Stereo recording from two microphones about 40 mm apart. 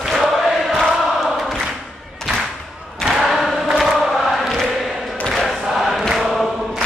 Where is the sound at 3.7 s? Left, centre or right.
Centre.